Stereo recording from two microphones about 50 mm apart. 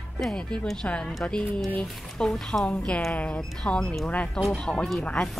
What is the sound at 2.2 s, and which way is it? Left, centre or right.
Speech, centre.